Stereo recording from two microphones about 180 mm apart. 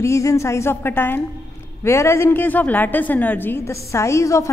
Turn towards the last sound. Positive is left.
turn(degrees=15)  # may be behind; listen again after turning